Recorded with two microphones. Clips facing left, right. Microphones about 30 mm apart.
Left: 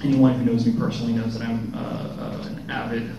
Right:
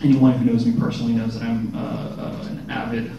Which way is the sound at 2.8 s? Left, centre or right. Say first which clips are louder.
Right 2 dB; centre.